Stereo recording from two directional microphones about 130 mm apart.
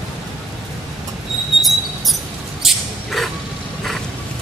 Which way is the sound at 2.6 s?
Centre (ahead or behind).